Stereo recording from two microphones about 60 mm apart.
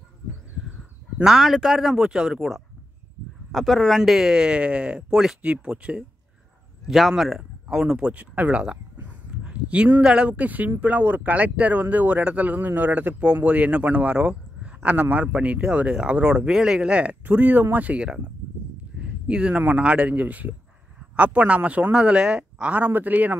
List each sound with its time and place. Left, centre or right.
1.2 s speech: centre
6.9 s speech: centre
9.4 s a sound: right
10.0 s speech: centre